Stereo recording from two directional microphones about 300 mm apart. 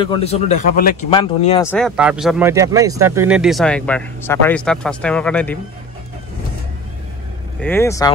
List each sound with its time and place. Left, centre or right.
0.0 s speech: centre
1.6 s speech: centre
7.6 s speech: centre